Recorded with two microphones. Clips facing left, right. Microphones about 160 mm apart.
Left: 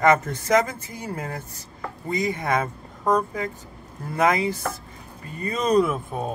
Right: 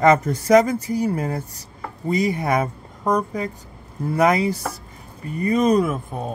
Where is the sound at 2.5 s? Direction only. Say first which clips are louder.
Right 3 dB; 15° right (ahead or behind).